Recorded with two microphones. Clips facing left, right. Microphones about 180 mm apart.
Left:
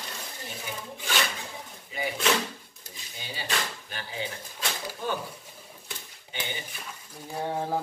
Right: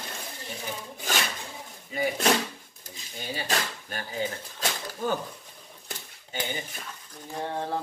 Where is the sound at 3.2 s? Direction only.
45° right (ahead or behind).